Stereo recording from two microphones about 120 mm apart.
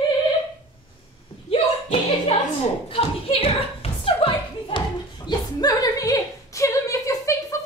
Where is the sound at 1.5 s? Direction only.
55° left (ahead or behind).